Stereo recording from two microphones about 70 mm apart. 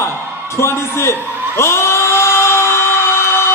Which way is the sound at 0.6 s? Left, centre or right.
Left.